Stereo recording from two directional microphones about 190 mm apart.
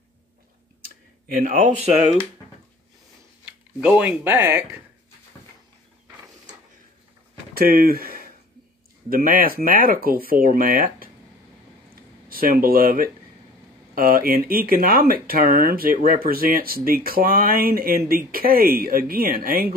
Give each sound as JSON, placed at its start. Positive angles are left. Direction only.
{"t": 0.8, "sound": "clicking", "side_deg": -45}
{"t": 1.8, "sound": "speech", "side_deg": -10}
{"t": 3.8, "sound": "speech", "side_deg": -5}
{"t": 7.5, "sound": "speech", "side_deg": -50}
{"t": 11.9, "sound": "a sound", "side_deg": -50}
{"t": 13.9, "sound": "speech", "side_deg": -50}